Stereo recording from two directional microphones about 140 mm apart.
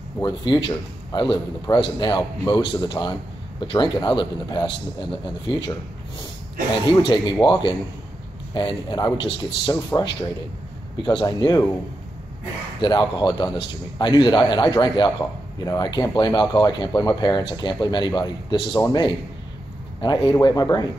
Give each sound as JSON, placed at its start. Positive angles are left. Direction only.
{"t": 0.2, "sound": "a man's voice", "side_deg": 35}
{"t": 6.9, "sound": "a man's voice", "side_deg": 35}
{"t": 8.5, "sound": "a man's voice", "side_deg": 30}
{"t": 12.8, "sound": "a man's voice", "side_deg": 35}